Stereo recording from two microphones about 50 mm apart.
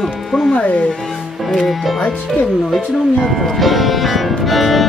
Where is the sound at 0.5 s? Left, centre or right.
Left.